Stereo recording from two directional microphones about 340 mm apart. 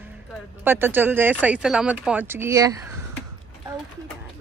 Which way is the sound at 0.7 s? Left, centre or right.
Centre.